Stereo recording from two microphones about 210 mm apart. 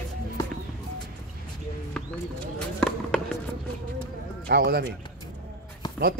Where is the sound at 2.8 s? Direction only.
5° left (ahead or behind).